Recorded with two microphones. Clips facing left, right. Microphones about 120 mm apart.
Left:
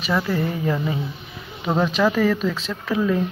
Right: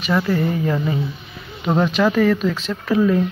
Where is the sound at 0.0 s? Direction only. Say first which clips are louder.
Right 3 dB; 5° left (ahead or behind).